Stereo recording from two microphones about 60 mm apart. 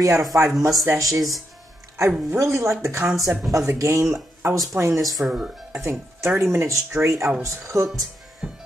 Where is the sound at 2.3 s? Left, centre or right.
Right.